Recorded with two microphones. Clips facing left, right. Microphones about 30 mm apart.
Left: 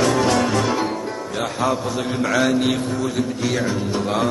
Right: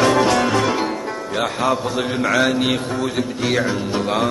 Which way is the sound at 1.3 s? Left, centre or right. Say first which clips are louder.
Right 2 dB; right.